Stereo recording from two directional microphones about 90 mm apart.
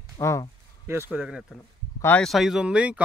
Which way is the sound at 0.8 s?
25° right (ahead or behind).